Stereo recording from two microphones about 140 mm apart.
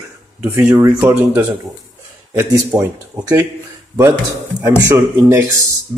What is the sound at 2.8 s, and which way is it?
A man's voice, 25° right (ahead or behind).